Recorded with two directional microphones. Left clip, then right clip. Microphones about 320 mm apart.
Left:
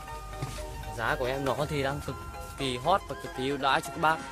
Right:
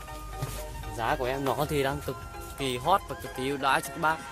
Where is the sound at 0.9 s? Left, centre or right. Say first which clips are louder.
Right 1 dB; centre.